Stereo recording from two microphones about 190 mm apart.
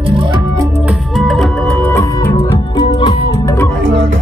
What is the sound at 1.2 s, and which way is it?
Music, centre (ahead or behind).